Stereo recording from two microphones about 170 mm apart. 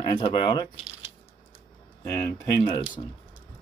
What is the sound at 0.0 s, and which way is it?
Speech, 30° left (ahead or behind).